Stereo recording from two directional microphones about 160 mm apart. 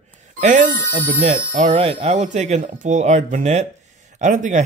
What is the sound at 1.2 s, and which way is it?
Speech, 45° right (ahead or behind).